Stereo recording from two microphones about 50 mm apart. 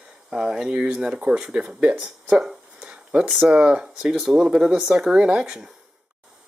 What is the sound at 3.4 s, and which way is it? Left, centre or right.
Speech, right.